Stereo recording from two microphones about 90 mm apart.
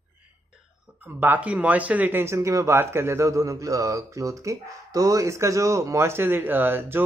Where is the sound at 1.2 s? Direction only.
20° right (ahead or behind).